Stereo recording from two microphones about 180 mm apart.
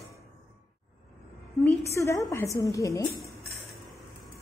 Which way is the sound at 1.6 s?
10° left (ahead or behind).